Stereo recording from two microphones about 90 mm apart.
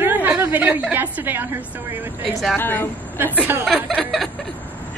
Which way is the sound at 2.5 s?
25° left (ahead or behind).